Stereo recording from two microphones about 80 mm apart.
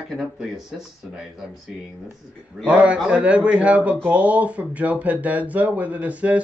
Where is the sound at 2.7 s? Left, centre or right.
Centre.